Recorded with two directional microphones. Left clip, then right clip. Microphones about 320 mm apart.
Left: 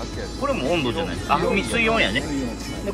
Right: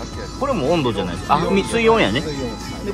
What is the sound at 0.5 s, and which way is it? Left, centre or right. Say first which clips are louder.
Speech: right 4 dB; centre.